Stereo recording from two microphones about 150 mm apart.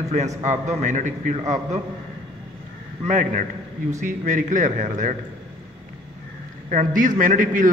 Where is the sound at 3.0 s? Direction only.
55° right (ahead or behind).